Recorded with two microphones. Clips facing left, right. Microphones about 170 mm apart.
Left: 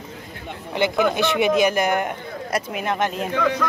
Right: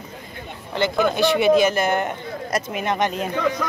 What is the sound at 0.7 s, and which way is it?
Speech, 15° left (ahead or behind).